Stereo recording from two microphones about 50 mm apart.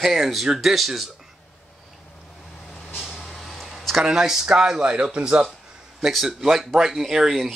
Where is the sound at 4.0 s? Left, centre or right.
Centre.